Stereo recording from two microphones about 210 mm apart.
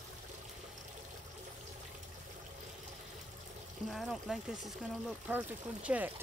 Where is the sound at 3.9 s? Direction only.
Centre (ahead or behind).